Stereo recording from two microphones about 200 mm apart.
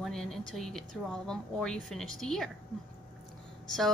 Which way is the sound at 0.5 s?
Centre (ahead or behind).